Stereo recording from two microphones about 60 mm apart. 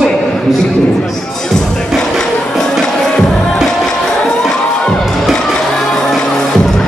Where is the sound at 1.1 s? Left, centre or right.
Centre.